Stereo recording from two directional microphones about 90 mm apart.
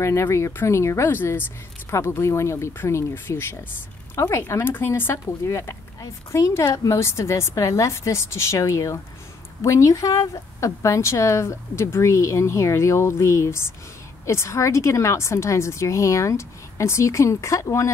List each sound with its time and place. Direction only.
0.0 s a woman's voice: 30° left (ahead or behind)